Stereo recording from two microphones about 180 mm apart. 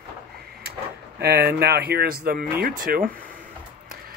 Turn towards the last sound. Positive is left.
turn(degrees=-55)  # may be behind; listen again after turning